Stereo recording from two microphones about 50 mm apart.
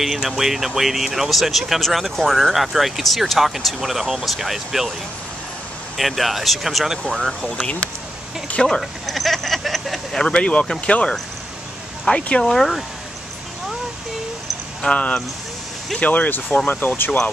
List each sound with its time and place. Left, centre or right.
0.0 s speech: centre
5.9 s speech: centre
8.6 s speech: centre
10.1 s speech: centre
12.2 s speech: left
12.4 s speech: centre
14.8 s speech: left
16.0 s speech: left